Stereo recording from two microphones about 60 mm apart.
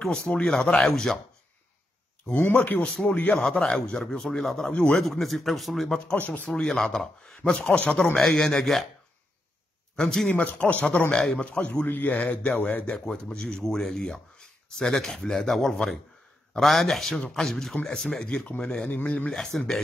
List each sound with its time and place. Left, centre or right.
0.0 s speech: centre
0.6 s speech: centre
2.5 s a man's voice: left
2.9 s speech: centre
6.1 s a man's voice: left
6.6 s speech: centre
8.2 s speech: centre
9.9 s speech: centre
10.3 s a man's voice: left
12.8 s speech: centre
18.9 s a man's voice: left
19.3 s speech: centre